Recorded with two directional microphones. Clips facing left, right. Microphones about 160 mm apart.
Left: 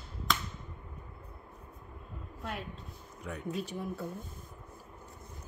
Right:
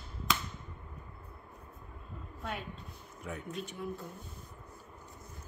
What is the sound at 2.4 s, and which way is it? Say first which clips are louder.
A woman's voice: even; centre (ahead or behind).